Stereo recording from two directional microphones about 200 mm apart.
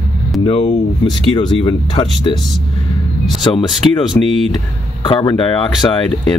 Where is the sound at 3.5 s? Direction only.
15° left (ahead or behind).